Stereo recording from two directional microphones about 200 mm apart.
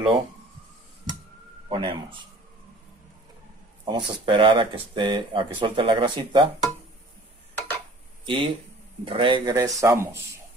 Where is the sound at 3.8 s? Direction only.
25° right (ahead or behind).